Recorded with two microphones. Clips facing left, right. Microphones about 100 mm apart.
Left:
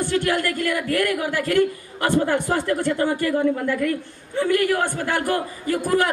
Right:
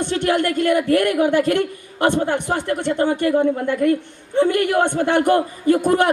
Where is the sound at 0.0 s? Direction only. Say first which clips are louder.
Right 3 dB; 25° right (ahead or behind).